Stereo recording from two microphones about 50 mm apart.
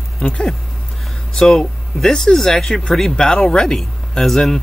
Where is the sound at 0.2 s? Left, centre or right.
Centre.